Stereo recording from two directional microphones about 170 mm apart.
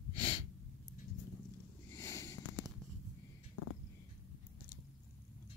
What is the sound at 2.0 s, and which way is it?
Sniff, 15° left (ahead or behind).